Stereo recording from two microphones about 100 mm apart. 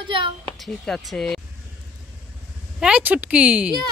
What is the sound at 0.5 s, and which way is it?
Speech, centre (ahead or behind).